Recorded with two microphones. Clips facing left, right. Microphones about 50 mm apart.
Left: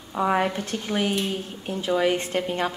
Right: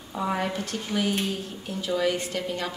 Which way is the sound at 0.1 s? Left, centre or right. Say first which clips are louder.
Left 5 dB; left.